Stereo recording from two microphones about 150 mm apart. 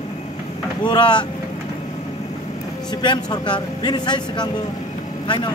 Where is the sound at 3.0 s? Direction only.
30° left (ahead or behind).